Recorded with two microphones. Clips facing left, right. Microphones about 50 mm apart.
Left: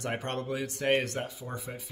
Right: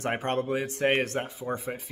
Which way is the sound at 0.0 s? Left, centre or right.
Right.